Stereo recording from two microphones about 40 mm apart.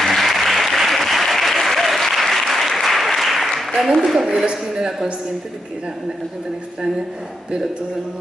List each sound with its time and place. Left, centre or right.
0.0 s applause: centre
4.5 s a man's voice: centre